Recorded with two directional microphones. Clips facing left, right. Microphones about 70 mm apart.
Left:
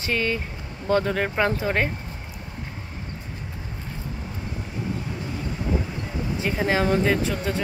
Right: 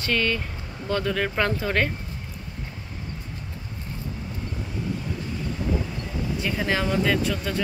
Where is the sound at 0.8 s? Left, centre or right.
Left.